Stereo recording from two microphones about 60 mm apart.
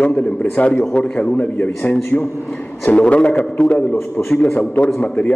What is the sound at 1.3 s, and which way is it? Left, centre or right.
A man's voice, left.